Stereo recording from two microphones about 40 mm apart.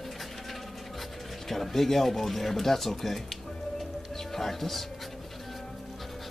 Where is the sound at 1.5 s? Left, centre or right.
Centre.